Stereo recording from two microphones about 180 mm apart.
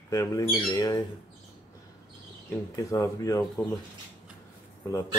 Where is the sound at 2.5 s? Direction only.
15° left (ahead or behind).